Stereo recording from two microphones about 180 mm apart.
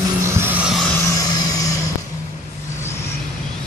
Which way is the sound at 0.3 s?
10° right (ahead or behind).